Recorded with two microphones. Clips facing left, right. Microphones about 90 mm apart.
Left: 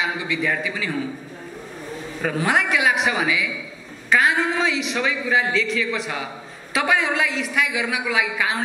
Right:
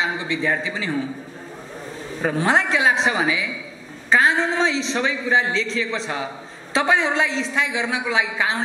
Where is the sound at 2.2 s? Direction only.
30° right (ahead or behind).